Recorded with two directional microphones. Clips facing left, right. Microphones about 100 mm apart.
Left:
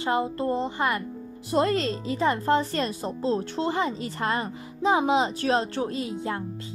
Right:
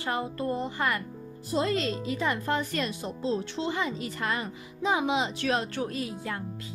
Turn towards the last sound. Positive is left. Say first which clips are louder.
# left 4 dB
turn(degrees=25)  # may be behind; listen again after turning